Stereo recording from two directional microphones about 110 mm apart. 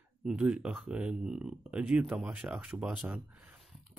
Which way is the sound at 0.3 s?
10° right (ahead or behind).